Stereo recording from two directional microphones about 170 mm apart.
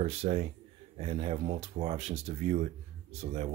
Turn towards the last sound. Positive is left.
turn(degrees=-40)  # may be behind; listen again after turning